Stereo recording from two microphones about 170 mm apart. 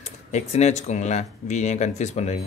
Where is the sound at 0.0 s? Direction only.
40° left (ahead or behind).